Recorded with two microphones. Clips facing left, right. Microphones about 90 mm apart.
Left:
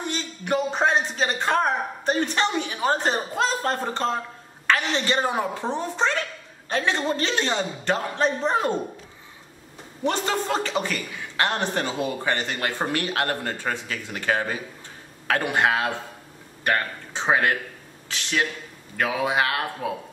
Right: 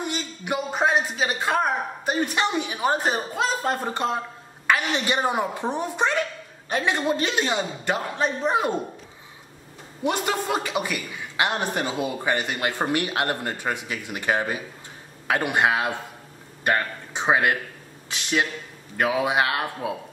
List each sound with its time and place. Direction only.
0.0 s a woman's voice: 10° right (ahead or behind)
10.0 s a woman's voice: 15° right (ahead or behind)